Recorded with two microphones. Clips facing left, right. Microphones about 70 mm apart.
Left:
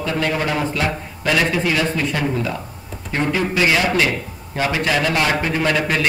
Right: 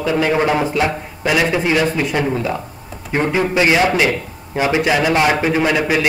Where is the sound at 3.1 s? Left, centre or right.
Right.